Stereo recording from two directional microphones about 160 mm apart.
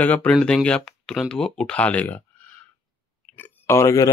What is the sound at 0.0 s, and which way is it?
Speech, 10° left (ahead or behind).